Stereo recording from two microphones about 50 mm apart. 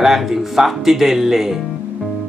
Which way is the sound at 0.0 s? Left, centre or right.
Centre.